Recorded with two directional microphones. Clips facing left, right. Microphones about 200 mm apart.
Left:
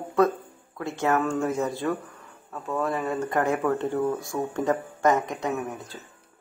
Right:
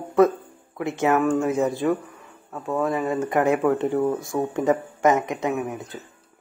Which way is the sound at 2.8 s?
Centre (ahead or behind).